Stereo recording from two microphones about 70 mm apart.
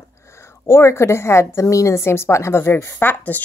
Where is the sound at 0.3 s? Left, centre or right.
Left.